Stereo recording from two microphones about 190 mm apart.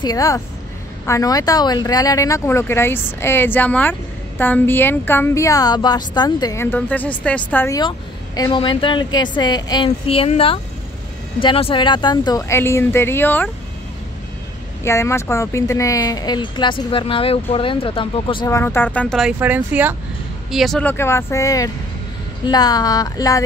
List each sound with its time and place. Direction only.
0.0 s a woman's voice: 20° left (ahead or behind)
14.8 s speech: 15° left (ahead or behind)
18.6 s speech: 10° left (ahead or behind); by 20.0 s 10° right (ahead or behind)
20.5 s a woman's voice: centre (ahead or behind); by 23.4 s 20° left (ahead or behind)